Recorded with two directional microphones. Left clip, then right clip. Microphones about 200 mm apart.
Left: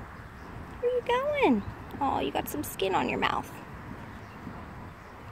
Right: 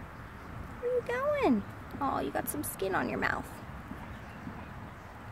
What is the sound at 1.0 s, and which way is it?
Speech, 5° right (ahead or behind).